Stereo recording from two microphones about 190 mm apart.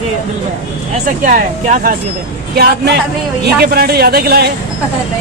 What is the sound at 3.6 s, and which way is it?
Speech, 55° right (ahead or behind).